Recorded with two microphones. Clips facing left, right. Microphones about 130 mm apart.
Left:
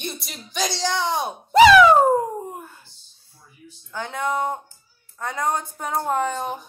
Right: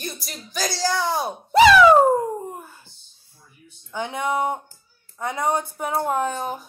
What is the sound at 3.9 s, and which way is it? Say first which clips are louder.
Speech: right 1 dB; 15° right (ahead or behind).